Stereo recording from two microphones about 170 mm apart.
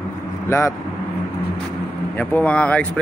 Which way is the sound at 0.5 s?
15° left (ahead or behind).